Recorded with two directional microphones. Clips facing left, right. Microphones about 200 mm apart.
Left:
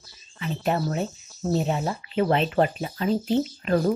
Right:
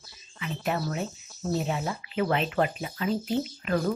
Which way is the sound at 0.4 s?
35° left (ahead or behind).